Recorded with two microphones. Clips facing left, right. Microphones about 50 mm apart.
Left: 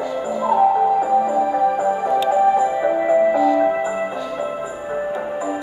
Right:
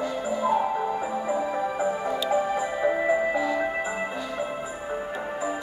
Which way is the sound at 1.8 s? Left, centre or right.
Left.